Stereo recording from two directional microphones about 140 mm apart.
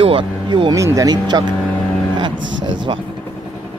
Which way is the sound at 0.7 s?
25° right (ahead or behind).